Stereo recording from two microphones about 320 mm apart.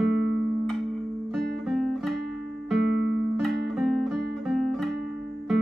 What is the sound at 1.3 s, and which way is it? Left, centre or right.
Guitar, centre.